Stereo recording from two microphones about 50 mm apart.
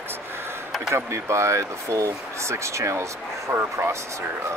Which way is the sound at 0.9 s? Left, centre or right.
Right.